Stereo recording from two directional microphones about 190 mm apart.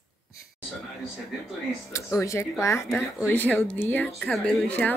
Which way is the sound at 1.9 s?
15° left (ahead or behind).